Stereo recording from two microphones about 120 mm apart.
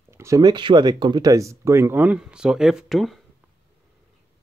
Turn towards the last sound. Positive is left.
turn(degrees=0)  # may be behind; listen again after turning